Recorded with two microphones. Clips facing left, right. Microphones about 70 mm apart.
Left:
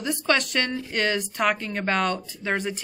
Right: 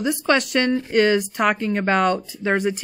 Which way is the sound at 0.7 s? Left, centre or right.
Right.